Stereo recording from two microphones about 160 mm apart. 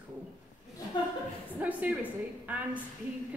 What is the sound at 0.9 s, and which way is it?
Speech, 25° left (ahead or behind).